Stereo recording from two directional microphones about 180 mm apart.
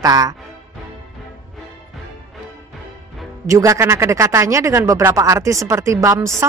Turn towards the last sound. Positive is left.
turn(degrees=-15)  # may be behind; listen again after turning